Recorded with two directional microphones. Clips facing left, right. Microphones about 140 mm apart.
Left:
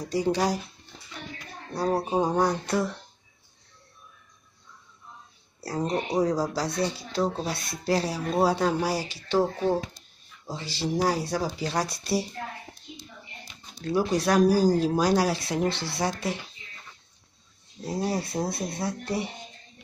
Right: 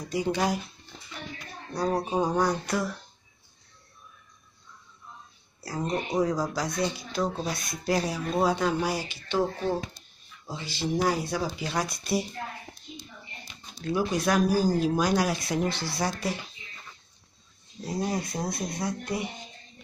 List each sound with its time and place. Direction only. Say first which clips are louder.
0.0 s speech: left 2 dB; 35° left (ahead or behind)
2.0 s speech: left 1 dB; 25° left (ahead or behind)
5.6 s speech: left 2 dB; 35° left (ahead or behind)
13.7 s speech: left 2 dB; 35° left (ahead or behind)
17.8 s speech: left 1 dB; 30° left (ahead or behind)